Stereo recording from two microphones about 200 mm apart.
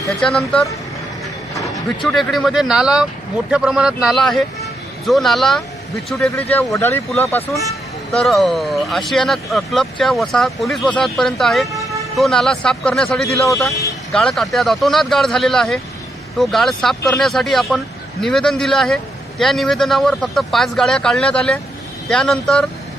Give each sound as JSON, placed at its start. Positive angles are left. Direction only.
{"t": 0.2, "sound": "speech", "side_deg": 0}
{"t": 1.5, "sound": "a sound", "side_deg": 15}
{"t": 2.0, "sound": "speech", "side_deg": 0}
{"t": 13.7, "sound": "speech", "side_deg": 15}
{"t": 14.1, "sound": "speech", "side_deg": 0}